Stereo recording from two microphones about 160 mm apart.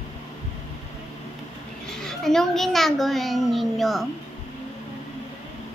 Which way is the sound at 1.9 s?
5° left (ahead or behind).